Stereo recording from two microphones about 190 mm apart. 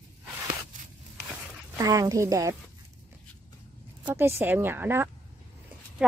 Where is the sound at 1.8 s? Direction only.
15° right (ahead or behind).